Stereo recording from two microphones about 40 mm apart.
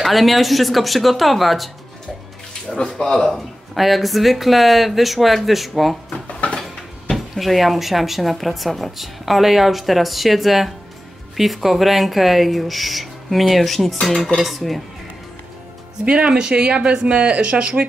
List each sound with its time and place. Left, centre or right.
0.0 s a woman's voice: centre
2.7 s a woman's voice: centre
6.2 s a sound: left
7.3 s a woman's voice: centre
16.3 s speech: centre